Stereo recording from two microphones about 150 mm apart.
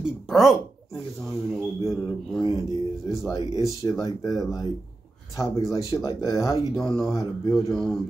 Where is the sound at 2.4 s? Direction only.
30° left (ahead or behind).